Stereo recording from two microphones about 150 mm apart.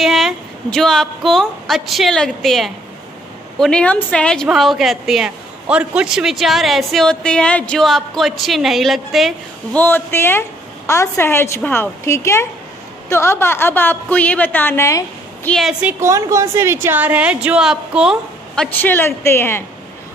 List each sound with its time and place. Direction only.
0.0 s a woman's voice: centre (ahead or behind)
9.8 s a woman's voice: 15° left (ahead or behind)
15.4 s a woman's voice: 5° left (ahead or behind)
15.8 s a woman's voice: 10° right (ahead or behind)
16.1 s a woman's voice: 20° right (ahead or behind); by 19.6 s 15° left (ahead or behind)